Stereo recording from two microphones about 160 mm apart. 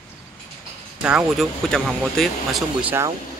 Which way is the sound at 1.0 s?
5° right (ahead or behind).